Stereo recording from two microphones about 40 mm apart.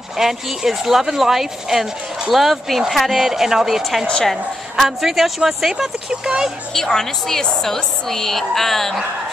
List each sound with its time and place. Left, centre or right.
0.2 s a woman's voice: centre
6.7 s a woman's voice: centre